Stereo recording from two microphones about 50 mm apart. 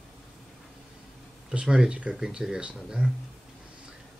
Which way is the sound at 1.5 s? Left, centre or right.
Centre.